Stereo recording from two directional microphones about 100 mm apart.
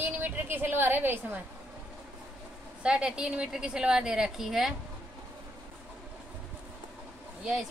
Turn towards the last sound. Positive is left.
turn(degrees=-5)  # may be behind; listen again after turning